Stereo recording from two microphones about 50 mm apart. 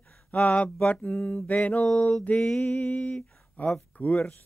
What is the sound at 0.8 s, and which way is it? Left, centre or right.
Speech, left.